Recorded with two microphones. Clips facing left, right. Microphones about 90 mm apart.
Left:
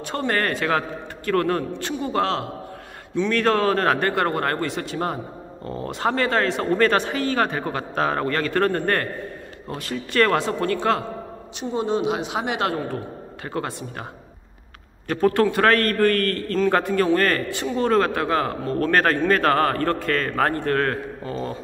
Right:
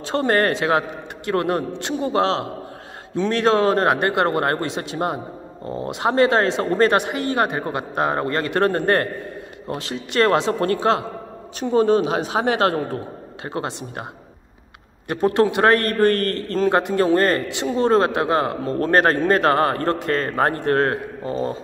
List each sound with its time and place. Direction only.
0.1 s a man's voice: 30° right (ahead or behind)
6.6 s speech: 35° right (ahead or behind)
6.9 s a man's voice: 15° right (ahead or behind)
10.6 s speech: 40° right (ahead or behind)
11.6 s speech: 50° right (ahead or behind)
13.4 s a man's voice: 25° right (ahead or behind)
15.0 s a man's voice: 20° right (ahead or behind)